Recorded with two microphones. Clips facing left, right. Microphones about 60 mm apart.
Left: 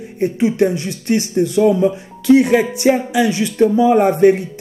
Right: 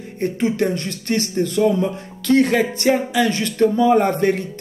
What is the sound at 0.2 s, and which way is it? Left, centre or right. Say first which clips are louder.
Speech: left 4 dB; centre.